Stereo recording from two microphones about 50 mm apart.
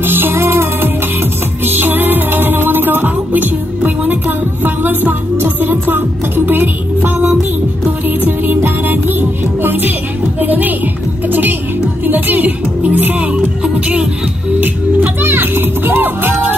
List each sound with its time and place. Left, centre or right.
0.0 s music: right
0.4 s music: right
1.7 s music: right
8.2 s music: right
15.2 s children playing: right